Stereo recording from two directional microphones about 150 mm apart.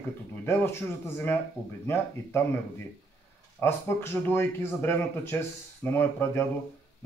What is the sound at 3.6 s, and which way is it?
Speech, 15° left (ahead or behind).